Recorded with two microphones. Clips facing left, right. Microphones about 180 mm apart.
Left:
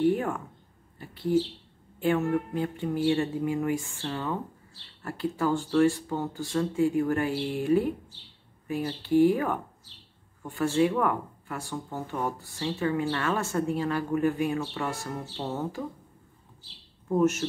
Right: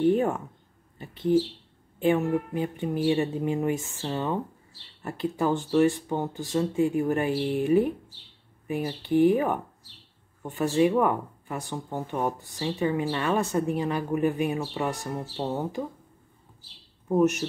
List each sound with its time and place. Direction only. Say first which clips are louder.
0.0 s speech: right 3 dB; 20° right (ahead or behind)
17.1 s speech: right 2 dB; 15° right (ahead or behind)